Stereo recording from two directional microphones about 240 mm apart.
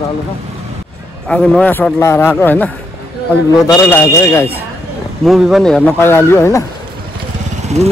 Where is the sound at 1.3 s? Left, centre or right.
Centre.